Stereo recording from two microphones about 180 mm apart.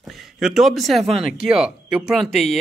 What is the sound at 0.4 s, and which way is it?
Speech, centre (ahead or behind).